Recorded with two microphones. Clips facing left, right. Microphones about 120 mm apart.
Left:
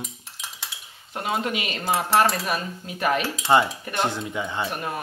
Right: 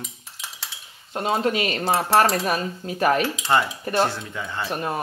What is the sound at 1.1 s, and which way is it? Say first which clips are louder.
Cutlery: right 4 dB; 30° right (ahead or behind).